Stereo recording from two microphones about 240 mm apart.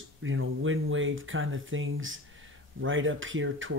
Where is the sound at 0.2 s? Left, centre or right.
Right.